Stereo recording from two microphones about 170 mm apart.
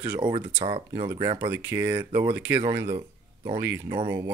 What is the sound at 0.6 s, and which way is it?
Speech, 30° right (ahead or behind).